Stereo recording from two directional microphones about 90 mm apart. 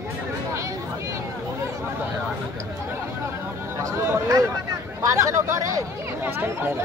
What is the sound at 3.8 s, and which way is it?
Speech, 30° right (ahead or behind).